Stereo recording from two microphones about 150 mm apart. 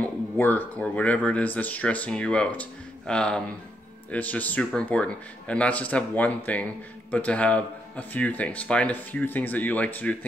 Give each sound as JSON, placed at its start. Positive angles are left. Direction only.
{"t": 0.0, "sound": "speech", "side_deg": 10}